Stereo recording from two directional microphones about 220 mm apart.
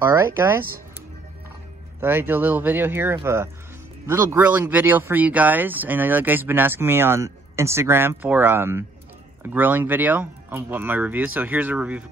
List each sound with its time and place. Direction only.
0.0 s speech: 10° right (ahead or behind)
2.0 s speech: 10° right (ahead or behind)